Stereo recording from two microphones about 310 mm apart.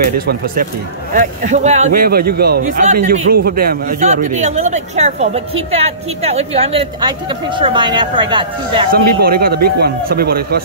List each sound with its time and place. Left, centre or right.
0.0 s a man's voice: right
9.2 s a man's voice: right